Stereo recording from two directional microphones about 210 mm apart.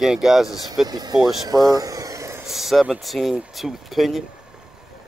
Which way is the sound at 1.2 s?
Centre (ahead or behind).